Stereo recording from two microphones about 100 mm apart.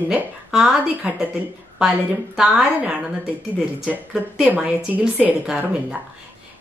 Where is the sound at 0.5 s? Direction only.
5° right (ahead or behind).